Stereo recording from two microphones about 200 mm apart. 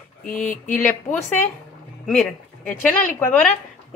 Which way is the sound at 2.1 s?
5° left (ahead or behind).